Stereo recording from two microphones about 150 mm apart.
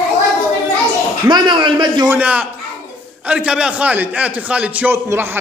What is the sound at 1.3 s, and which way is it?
Speech, 30° right (ahead or behind).